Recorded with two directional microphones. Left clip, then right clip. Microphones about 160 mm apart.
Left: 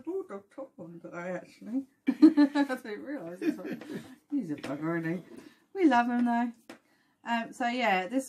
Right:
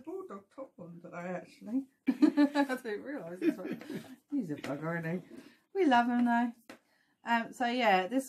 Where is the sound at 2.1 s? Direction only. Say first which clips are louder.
Left 5 dB; 30° right (ahead or behind).